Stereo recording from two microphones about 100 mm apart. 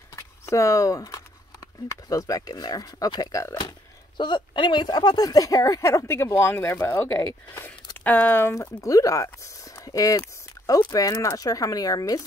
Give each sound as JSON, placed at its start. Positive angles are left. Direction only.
{"t": 0.1, "sound": "a sound", "side_deg": 30}
{"t": 2.0, "sound": "speech", "side_deg": 35}
{"t": 4.2, "sound": "speech", "side_deg": 50}